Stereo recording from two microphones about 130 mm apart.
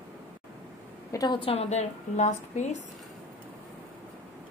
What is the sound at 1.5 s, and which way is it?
A woman's voice, 55° left (ahead or behind).